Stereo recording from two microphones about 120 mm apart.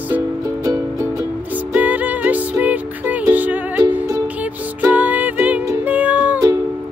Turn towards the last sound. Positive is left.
turn(degrees=-15)  # may be behind; listen again after turning